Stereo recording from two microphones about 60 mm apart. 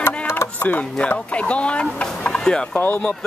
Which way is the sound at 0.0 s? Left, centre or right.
Left.